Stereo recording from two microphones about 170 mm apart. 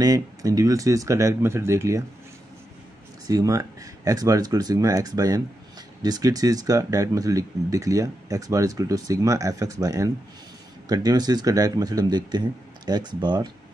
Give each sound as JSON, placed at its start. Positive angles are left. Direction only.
{"t": 0.0, "sound": "speech", "side_deg": -20}
{"t": 3.3, "sound": "speech", "side_deg": -20}